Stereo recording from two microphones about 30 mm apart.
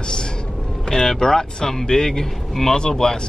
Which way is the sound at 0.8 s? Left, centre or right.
Centre.